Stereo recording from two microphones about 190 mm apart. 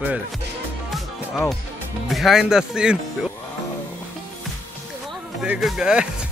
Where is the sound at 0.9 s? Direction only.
5° left (ahead or behind).